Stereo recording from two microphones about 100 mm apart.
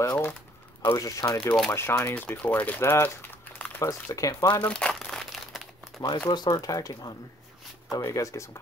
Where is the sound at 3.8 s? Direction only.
35° left (ahead or behind).